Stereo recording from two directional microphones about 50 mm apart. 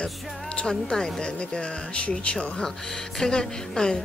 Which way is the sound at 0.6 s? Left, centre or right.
Left.